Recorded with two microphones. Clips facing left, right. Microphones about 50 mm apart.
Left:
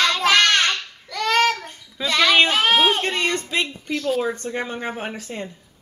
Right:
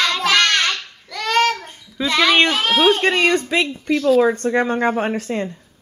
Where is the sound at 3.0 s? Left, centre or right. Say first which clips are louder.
Right 6 dB; right.